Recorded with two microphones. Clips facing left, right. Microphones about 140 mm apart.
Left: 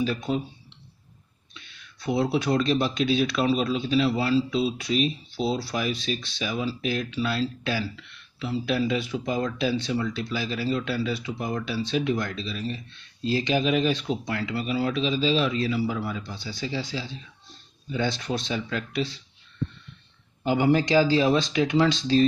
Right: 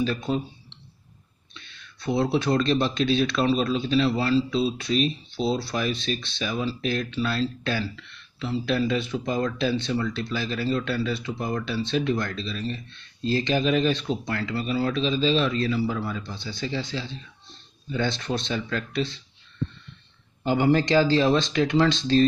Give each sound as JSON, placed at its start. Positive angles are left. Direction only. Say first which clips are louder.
{"t": 0.0, "sound": "speech", "louder": "right 1 dB", "side_deg": 10}
{"t": 20.4, "sound": "speech", "louder": "right 1 dB", "side_deg": 10}